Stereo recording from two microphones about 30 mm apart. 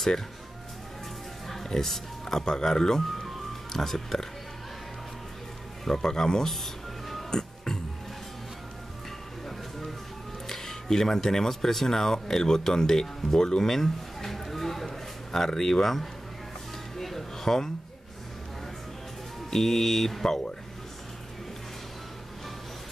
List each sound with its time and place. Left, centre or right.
1.7 s speech: centre
5.9 s speech: centre
6.5 s music: centre
7.2 s music: centre
10.4 s speech: centre
13.6 s a sound: centre
14.9 s speech: centre
16.9 s music: centre
19.5 s speech: centre